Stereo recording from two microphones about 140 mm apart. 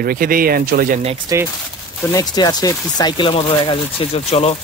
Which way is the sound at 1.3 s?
25° right (ahead or behind).